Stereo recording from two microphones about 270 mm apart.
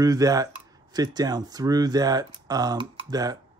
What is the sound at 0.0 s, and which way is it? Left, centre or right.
Speech, centre.